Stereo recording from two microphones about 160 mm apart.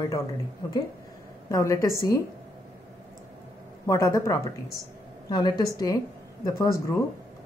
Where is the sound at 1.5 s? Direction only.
20° left (ahead or behind).